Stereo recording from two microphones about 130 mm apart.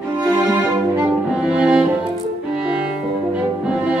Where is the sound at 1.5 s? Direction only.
5° right (ahead or behind).